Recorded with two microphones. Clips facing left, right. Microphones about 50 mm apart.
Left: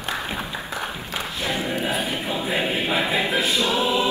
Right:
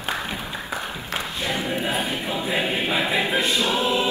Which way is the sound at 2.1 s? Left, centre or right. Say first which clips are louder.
Even; centre.